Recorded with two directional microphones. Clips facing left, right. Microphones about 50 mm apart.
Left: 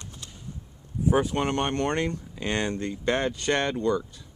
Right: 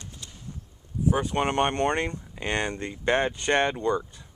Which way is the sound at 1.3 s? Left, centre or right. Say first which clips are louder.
Right 2 dB; right.